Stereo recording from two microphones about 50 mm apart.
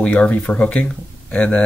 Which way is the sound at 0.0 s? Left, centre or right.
Left.